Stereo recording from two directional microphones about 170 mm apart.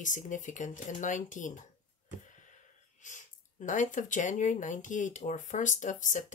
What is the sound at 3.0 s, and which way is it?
Speech, 45° left (ahead or behind).